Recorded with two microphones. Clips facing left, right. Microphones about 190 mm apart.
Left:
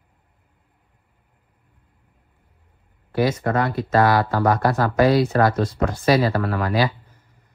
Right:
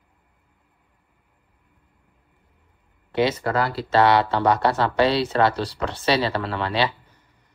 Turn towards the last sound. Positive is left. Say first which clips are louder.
# left 3 dB
turn(degrees=-30)  # may be behind; listen again after turning